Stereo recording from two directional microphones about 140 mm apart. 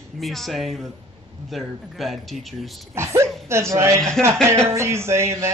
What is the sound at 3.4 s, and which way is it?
Speech, 20° right (ahead or behind).